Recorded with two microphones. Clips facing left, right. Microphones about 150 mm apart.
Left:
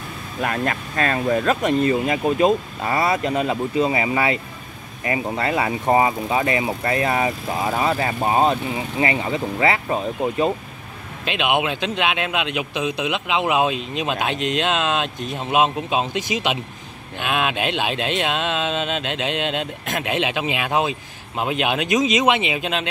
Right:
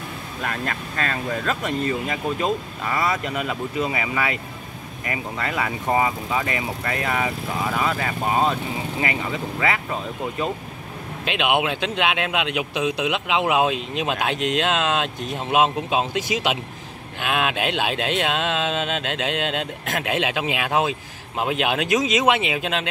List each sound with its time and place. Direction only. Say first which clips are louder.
0.4 s speech: left 5 dB; 45° left (ahead or behind)
11.2 s a man's voice: left 1 dB; 5° right (ahead or behind)